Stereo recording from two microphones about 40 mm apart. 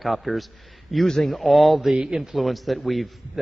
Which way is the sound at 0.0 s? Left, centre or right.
Centre.